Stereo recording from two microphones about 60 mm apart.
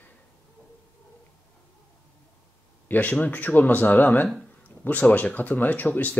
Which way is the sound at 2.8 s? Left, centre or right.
Left.